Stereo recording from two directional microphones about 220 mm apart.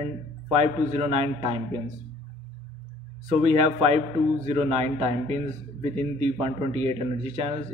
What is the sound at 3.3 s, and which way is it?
A man's voice, 30° right (ahead or behind).